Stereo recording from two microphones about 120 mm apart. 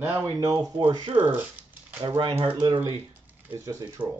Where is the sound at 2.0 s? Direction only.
40° right (ahead or behind).